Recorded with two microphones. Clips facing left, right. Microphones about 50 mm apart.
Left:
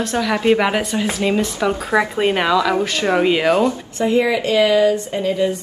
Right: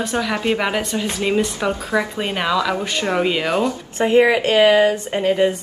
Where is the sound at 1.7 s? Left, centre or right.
Left.